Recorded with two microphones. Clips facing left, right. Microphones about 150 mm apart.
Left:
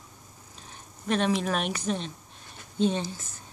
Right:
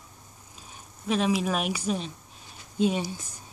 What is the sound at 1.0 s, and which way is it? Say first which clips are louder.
Speech: right 1 dB; 5° right (ahead or behind).